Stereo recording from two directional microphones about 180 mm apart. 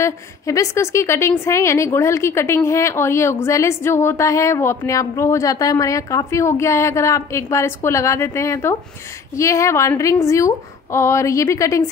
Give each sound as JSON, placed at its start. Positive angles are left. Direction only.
{"t": 0.0, "sound": "a woman's voice", "side_deg": 15}